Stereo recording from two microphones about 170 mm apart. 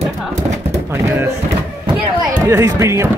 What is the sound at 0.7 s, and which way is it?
Speech, 15° right (ahead or behind).